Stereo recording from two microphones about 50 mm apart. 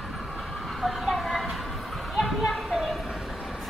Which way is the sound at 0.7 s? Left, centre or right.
Centre.